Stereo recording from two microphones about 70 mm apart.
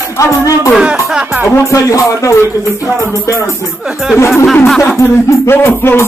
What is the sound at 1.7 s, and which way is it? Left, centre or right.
Speech, left.